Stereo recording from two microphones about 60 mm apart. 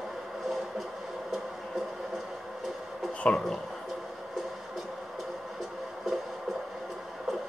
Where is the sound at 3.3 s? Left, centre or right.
Centre.